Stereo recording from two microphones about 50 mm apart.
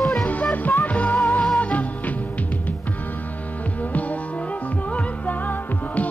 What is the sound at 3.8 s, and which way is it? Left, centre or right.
Music, left.